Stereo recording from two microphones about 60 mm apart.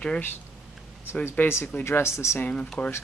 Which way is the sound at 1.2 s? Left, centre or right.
Left.